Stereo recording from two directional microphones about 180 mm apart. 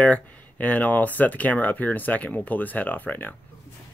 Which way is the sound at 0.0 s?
10° left (ahead or behind).